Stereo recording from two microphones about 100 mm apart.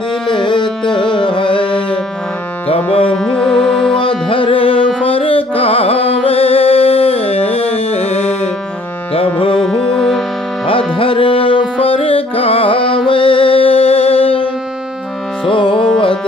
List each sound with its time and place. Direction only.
0.3 s carnatic music: 55° left (ahead or behind)
2.7 s music: 65° left (ahead or behind)
3.2 s music: 5° left (ahead or behind)
3.9 s music: 60° left (ahead or behind); by 8.4 s 90° left
9.1 s music: 65° left (ahead or behind)
9.7 s music: 5° left (ahead or behind)
10.7 s music: 65° left (ahead or behind)
15.4 s music: 60° left (ahead or behind)